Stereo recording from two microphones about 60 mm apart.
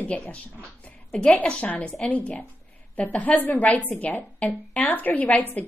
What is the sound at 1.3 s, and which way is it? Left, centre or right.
Speech, left.